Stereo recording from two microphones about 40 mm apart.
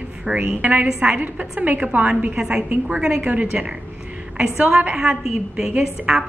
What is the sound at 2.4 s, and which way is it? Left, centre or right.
Speech, right.